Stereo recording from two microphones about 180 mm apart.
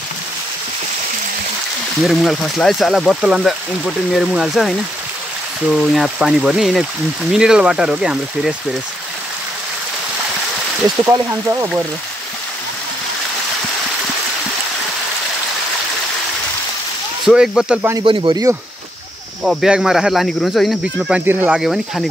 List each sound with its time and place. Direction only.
2.0 s speech: centre (ahead or behind)
11.1 s speech: 15° right (ahead or behind)
17.3 s speech: 5° right (ahead or behind)
17.9 s speech: 25° right (ahead or behind)
19.4 s speech: centre (ahead or behind)